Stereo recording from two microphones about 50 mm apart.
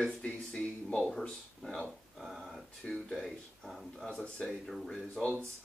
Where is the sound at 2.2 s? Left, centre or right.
Centre.